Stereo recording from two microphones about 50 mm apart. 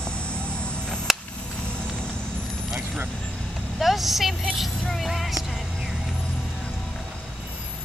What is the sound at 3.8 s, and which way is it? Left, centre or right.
Vehicle, centre.